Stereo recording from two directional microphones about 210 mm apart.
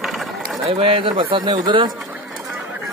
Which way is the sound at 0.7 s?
25° right (ahead or behind).